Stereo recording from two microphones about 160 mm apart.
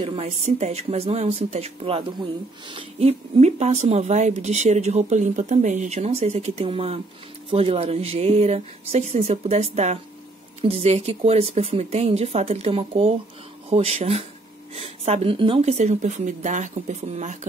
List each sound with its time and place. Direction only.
0.0 s speech: 35° right (ahead or behind)